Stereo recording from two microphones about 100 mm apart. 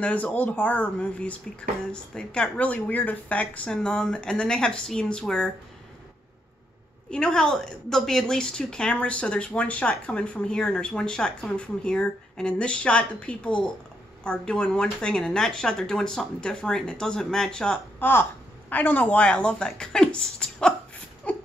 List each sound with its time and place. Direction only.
0.0 s a woman's voice: 15° left (ahead or behind)
7.1 s a woman's voice: 5° left (ahead or behind)
17.9 s a woman's voice: 20° left (ahead or behind)
21.3 s a sound: 10° left (ahead or behind)